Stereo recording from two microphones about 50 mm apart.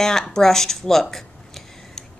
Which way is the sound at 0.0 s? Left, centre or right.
Centre.